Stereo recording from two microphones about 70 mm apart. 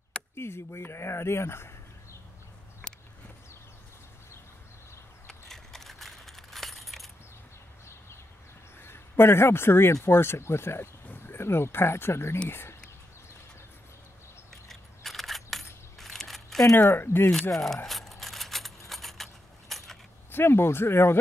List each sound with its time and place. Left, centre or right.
0.4 s speech: left
2.8 s a sound: centre
5.2 s a sound: centre
8.8 s a man's voice: left
14.7 s a sound: centre
16.9 s speech: left
17.3 s speech: centre
17.8 s keys jangling: centre
20.2 s speech: left